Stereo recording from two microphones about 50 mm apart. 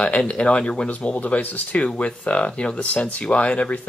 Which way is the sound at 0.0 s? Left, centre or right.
Left.